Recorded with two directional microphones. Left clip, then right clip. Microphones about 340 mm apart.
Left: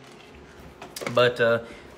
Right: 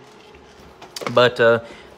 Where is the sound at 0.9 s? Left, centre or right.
Centre.